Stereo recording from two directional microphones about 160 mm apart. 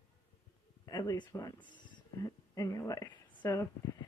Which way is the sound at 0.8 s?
20° left (ahead or behind).